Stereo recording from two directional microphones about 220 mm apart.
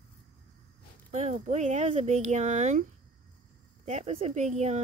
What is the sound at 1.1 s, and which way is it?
Speech, 30° right (ahead or behind).